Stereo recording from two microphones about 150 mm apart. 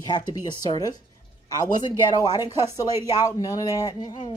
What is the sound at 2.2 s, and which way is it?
Speech, 25° left (ahead or behind).